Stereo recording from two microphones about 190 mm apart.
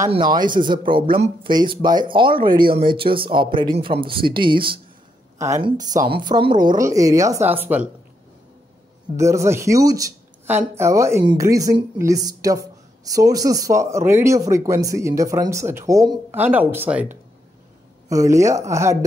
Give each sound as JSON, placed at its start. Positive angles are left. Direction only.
{"t": 0.1, "sound": "speech", "side_deg": -20}
{"t": 9.1, "sound": "speech", "side_deg": -15}